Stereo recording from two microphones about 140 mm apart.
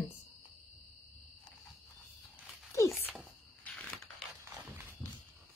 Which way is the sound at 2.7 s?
20° left (ahead or behind).